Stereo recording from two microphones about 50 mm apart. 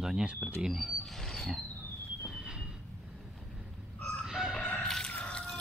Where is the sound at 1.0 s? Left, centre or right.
Centre.